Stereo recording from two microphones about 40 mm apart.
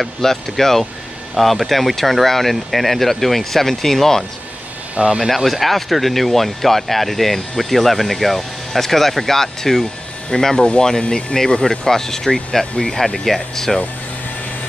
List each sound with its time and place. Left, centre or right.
0.0 s speech: centre
5.0 s speech: right
5.3 s speech: centre